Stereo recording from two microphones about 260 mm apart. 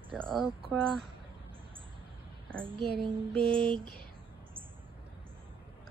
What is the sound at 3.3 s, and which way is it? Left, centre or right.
Speech, centre.